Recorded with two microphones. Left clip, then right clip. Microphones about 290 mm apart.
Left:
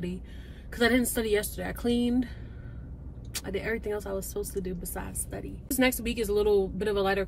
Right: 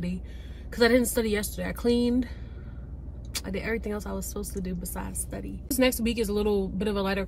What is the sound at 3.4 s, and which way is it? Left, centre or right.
A woman's voice, centre.